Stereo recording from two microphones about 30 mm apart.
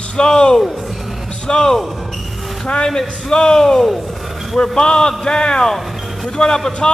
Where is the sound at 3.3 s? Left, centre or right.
Left.